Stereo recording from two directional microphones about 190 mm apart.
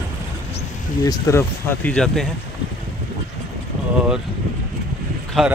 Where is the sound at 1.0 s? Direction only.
15° left (ahead or behind).